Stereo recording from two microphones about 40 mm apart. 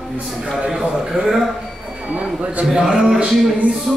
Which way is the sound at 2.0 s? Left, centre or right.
Right.